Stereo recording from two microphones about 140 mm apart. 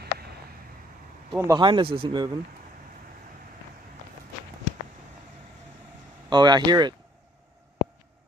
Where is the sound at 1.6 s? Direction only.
40° right (ahead or behind).